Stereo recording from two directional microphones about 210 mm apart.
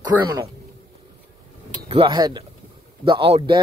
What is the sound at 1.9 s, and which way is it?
Speech, 20° right (ahead or behind).